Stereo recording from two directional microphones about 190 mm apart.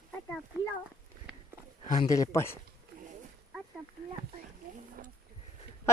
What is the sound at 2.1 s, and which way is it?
Speech, 15° left (ahead or behind).